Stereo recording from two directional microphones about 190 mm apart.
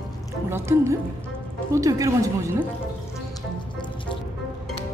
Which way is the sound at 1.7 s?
20° right (ahead or behind).